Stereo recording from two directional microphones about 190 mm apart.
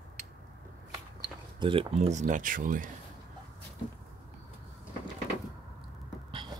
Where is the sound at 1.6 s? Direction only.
30° right (ahead or behind); by 2.9 s 45° right (ahead or behind).